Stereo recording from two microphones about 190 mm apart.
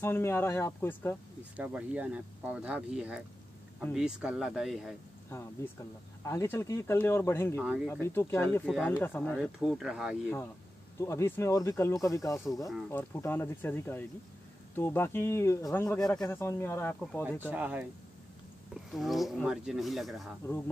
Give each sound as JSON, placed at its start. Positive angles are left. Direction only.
{"t": 0.0, "sound": "speech", "side_deg": 10}
{"t": 1.6, "sound": "speech", "side_deg": -5}
{"t": 6.2, "sound": "speech", "side_deg": 15}
{"t": 7.6, "sound": "speech", "side_deg": -5}
{"t": 7.9, "sound": "speech", "side_deg": 15}
{"t": 9.7, "sound": "speech", "side_deg": -5}
{"t": 11.0, "sound": "speech", "side_deg": 15}
{"t": 17.4, "sound": "speech", "side_deg": -10}
{"t": 18.9, "sound": "speech", "side_deg": 0}
{"t": 20.4, "sound": "speech", "side_deg": 10}